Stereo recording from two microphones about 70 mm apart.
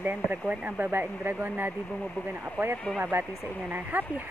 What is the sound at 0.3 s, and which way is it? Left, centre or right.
Speech, right.